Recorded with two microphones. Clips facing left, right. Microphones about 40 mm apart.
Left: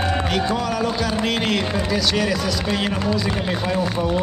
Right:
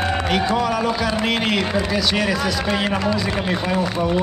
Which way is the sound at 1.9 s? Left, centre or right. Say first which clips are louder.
Even; centre.